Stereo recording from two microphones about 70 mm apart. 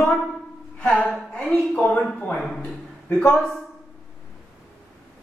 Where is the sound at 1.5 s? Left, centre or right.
Left.